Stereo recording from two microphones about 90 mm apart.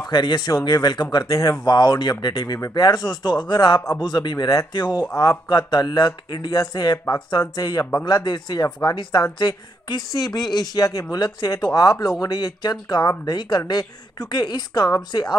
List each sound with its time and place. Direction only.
0.0 s a woman's voice: 55° left (ahead or behind)